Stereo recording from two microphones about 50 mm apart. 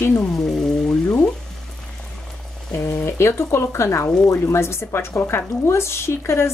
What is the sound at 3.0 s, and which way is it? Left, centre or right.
Speech, left.